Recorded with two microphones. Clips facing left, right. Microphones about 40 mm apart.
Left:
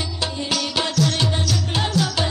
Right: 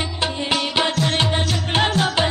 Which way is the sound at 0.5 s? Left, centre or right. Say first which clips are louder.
Right 4 dB; right.